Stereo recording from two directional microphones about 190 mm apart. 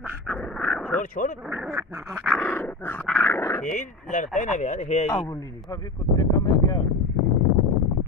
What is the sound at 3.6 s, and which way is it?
Speech, 40° left (ahead or behind).